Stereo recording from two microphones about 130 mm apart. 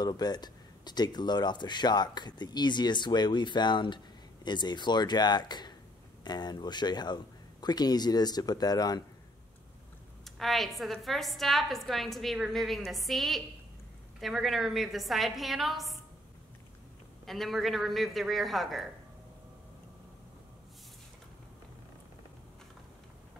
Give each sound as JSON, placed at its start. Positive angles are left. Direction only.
{"t": 0.0, "sound": "speech", "side_deg": 30}
{"t": 10.2, "sound": "a woman's voice", "side_deg": 0}
{"t": 17.3, "sound": "a woman's voice", "side_deg": 0}